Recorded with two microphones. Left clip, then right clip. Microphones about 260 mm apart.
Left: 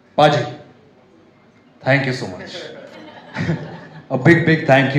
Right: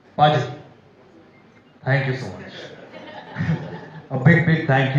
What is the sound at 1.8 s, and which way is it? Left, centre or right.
Speech, left.